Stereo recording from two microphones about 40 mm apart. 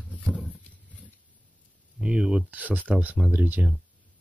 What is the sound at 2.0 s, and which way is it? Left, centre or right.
Speech, right.